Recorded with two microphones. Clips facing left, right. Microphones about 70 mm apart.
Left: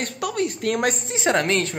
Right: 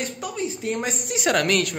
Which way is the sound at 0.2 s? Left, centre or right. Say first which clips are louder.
Left 4 dB; left.